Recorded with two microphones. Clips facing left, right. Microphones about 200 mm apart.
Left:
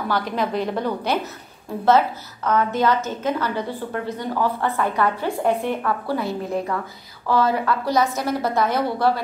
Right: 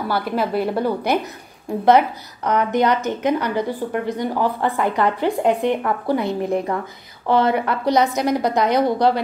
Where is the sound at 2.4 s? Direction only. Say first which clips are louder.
Right 2 dB; 15° right (ahead or behind).